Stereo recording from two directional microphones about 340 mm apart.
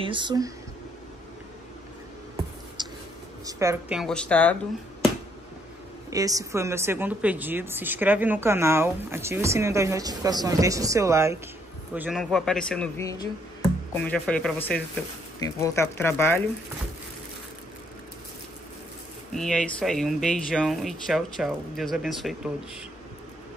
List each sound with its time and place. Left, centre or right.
0.0 s a woman's voice: centre
2.8 s writing: centre
3.4 s speech: centre
6.0 s a woman's voice: centre
19.3 s speech: centre